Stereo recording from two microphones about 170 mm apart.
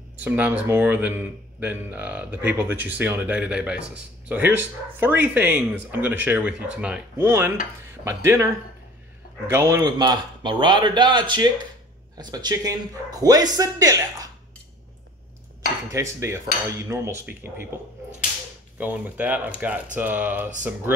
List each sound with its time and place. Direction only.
0.2 s speech: 10° right (ahead or behind)
9.5 s speech: 15° right (ahead or behind)
15.9 s speech: 15° right (ahead or behind)
18.8 s speech: 10° right (ahead or behind)